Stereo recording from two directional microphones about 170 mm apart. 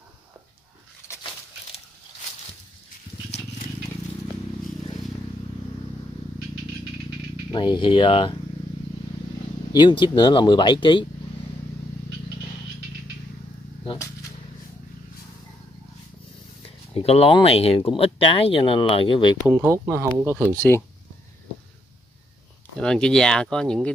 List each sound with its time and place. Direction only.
7.5 s speech: 30° left (ahead or behind)
9.7 s speech: 25° left (ahead or behind)
16.9 s speech: 35° left (ahead or behind)
19.4 s speech: 15° right (ahead or behind)
20.5 s speech: 10° left (ahead or behind)
22.8 s speech: 5° left (ahead or behind)